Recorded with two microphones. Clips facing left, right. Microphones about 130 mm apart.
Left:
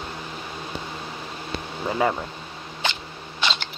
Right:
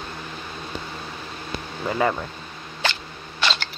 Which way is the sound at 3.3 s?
20° left (ahead or behind).